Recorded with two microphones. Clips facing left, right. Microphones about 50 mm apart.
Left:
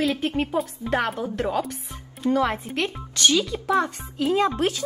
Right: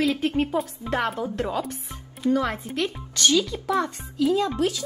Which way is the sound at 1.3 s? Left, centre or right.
Left.